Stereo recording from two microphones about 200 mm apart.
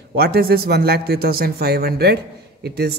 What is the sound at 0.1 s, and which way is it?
A man's voice, 50° right (ahead or behind).